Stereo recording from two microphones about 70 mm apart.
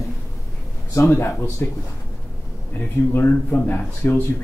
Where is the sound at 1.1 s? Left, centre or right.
Left.